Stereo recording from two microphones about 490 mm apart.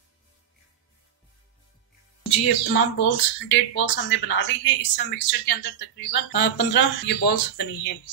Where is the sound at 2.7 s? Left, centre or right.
Left.